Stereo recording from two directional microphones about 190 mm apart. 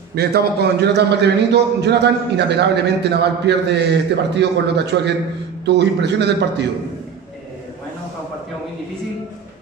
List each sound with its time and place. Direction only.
0.1 s a man's voice: 60° right (ahead or behind)